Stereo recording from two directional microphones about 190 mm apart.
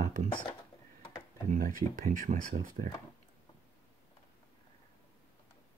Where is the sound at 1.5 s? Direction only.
45° right (ahead or behind).